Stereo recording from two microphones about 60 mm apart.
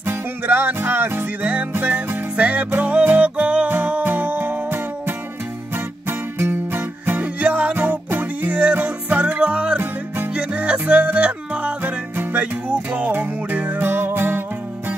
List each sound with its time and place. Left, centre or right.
0.0 s music: right
2.3 s music: right
3.7 s music: right
7.2 s music: right
11.8 s music: right